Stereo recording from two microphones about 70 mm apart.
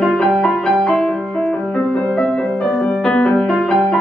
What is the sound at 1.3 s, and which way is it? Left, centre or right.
Music, centre.